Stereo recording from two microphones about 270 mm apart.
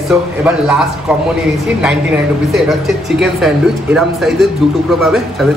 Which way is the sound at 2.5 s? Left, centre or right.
Centre.